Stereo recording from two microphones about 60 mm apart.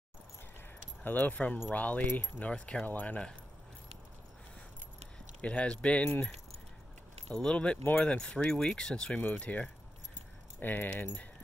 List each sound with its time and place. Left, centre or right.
1.0 s speech: left
5.4 s speech: centre
7.2 s speech: centre
10.6 s speech: left